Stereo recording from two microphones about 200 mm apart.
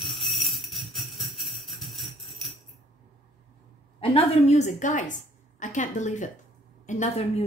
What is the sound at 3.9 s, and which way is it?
A woman's voice, 30° left (ahead or behind).